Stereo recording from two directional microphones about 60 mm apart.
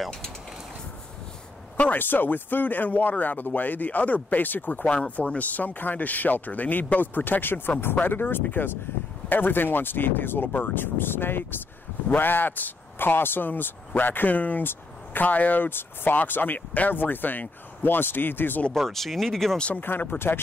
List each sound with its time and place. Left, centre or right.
1.8 s speech: left
18.7 s speech: centre
19.8 s speech: left